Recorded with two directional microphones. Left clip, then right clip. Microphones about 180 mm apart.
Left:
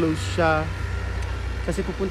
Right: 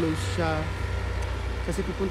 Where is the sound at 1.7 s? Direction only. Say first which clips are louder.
Left 3 dB; 50° right (ahead or behind).